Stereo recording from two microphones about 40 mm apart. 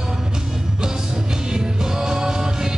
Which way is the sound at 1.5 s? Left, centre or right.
Centre.